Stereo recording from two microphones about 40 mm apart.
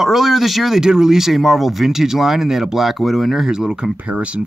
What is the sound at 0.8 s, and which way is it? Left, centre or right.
Speech, centre.